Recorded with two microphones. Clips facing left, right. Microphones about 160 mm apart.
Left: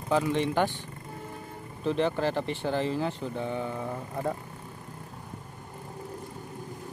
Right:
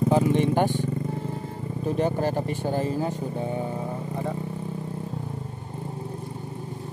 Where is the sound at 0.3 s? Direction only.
50° right (ahead or behind).